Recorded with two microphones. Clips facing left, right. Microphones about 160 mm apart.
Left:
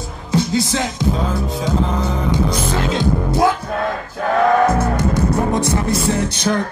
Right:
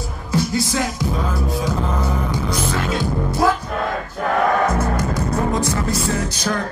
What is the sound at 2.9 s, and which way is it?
Music, 20° left (ahead or behind).